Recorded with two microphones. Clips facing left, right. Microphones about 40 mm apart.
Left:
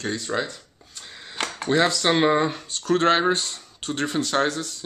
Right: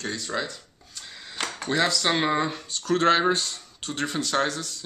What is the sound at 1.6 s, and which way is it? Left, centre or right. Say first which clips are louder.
Speech: left 4 dB; centre.